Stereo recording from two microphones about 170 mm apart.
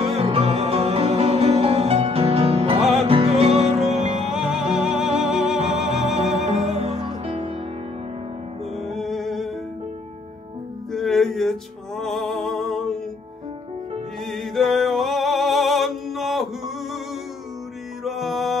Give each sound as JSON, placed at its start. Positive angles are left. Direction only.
{"t": 0.1, "sound": "music", "side_deg": -35}
{"t": 4.3, "sound": "music", "side_deg": 0}
{"t": 5.6, "sound": "music", "side_deg": -40}
{"t": 5.9, "sound": "music", "side_deg": 0}
{"t": 6.3, "sound": "music", "side_deg": -40}
{"t": 8.8, "sound": "music", "side_deg": 0}
{"t": 10.9, "sound": "music", "side_deg": 0}
{"t": 14.2, "sound": "music", "side_deg": 0}
{"t": 18.0, "sound": "music", "side_deg": 0}